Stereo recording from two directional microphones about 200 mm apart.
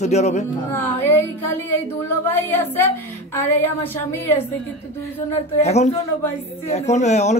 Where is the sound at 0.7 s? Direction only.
10° left (ahead or behind).